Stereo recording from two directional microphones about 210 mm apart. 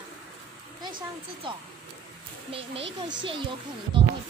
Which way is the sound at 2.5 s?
25° right (ahead or behind).